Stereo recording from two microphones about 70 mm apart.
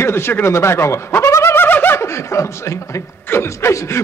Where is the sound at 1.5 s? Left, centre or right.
Left.